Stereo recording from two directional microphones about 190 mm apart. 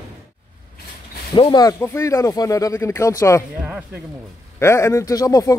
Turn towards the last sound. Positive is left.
turn(degrees=20)  # may be behind; listen again after turning